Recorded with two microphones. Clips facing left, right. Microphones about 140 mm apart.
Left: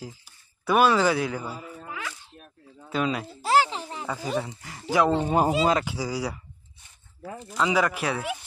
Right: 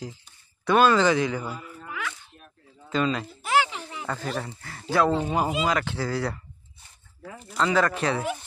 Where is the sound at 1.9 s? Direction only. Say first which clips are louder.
Right 5 dB; 30° left (ahead or behind).